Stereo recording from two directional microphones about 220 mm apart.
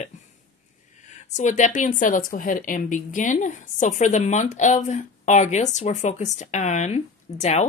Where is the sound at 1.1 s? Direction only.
30° left (ahead or behind).